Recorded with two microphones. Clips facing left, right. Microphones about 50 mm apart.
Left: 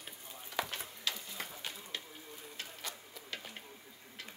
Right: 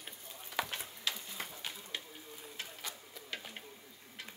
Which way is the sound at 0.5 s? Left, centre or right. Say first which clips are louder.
Even; centre.